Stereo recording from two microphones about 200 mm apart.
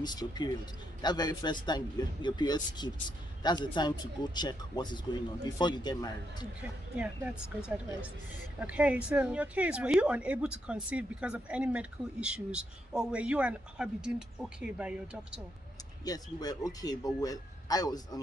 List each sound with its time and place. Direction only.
0.0 s speech: 20° left (ahead or behind)
6.6 s speech: 5° right (ahead or behind)
16.0 s speech: 20° left (ahead or behind)